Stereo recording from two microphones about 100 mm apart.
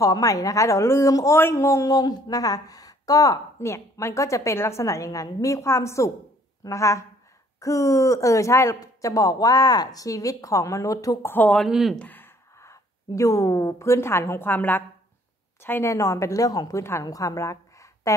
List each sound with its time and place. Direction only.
0.0 s a woman's voice: 35° left (ahead or behind)
11.2 s speech: 15° left (ahead or behind)
11.6 s speech: centre (ahead or behind)
12.0 s a woman's voice: 20° left (ahead or behind)